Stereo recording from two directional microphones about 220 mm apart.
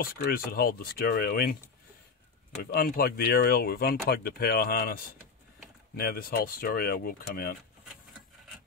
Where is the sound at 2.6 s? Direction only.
40° left (ahead or behind).